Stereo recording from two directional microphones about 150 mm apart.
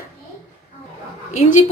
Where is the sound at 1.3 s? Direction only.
55° left (ahead or behind).